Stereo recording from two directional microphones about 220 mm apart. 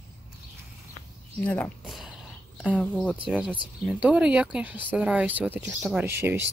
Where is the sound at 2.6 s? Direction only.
5° right (ahead or behind).